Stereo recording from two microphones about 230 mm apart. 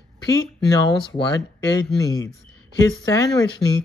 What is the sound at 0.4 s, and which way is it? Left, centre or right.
Speech, centre.